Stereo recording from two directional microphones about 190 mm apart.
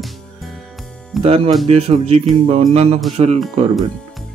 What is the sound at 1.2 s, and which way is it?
Speech, 30° right (ahead or behind).